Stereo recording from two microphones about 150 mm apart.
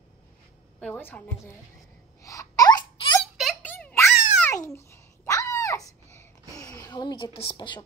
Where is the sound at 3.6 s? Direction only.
10° left (ahead or behind).